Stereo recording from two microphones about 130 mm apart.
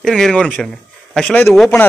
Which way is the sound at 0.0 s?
5° left (ahead or behind).